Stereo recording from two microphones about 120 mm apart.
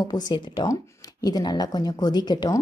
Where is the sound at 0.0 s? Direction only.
35° left (ahead or behind).